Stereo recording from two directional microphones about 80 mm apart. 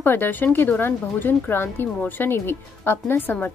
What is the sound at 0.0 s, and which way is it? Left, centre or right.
Speech, left.